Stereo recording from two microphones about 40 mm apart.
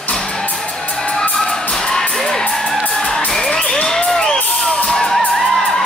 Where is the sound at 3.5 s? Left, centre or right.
Left.